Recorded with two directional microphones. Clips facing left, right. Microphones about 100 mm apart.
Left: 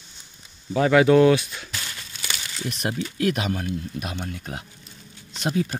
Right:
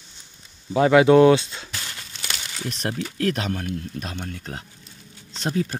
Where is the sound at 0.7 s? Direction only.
25° right (ahead or behind).